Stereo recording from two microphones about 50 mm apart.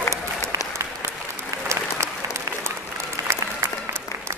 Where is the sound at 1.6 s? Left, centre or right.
Right.